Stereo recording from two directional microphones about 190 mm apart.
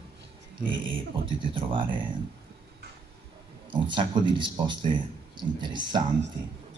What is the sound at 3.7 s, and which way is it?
Speech, 25° right (ahead or behind).